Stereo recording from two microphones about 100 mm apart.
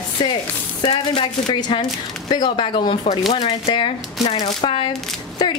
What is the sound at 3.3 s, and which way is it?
Speech, 90° left.